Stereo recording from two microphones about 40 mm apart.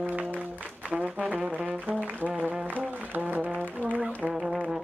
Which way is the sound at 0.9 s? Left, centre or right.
Right.